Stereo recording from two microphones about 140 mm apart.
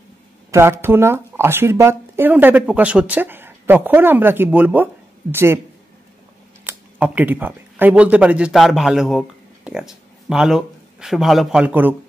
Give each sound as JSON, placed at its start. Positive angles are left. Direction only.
{"t": 0.5, "sound": "speech", "side_deg": -20}
{"t": 6.6, "sound": "speech", "side_deg": -15}